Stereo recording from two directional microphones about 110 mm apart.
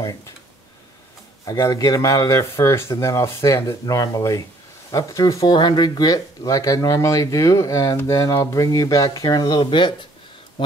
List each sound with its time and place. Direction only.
0.0 s speech: 35° left (ahead or behind)
1.4 s speech: 35° left (ahead or behind)
5.5 s speech: 40° left (ahead or behind)
9.6 s speech: 45° left (ahead or behind)